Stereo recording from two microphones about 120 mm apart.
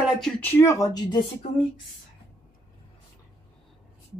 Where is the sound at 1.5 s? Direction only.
80° left.